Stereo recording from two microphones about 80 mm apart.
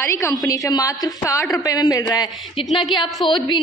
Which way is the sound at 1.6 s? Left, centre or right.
Left.